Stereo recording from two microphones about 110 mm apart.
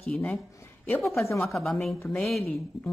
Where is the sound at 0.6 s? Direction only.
20° left (ahead or behind).